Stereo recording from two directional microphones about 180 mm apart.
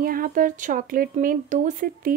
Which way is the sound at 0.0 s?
50° right (ahead or behind).